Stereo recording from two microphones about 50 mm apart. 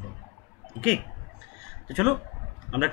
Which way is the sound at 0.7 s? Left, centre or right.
Centre.